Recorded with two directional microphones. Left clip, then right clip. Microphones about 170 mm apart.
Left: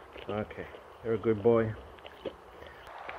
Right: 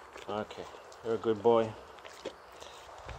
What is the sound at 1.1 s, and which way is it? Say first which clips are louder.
Speech: left 1 dB; 20° right (ahead or behind).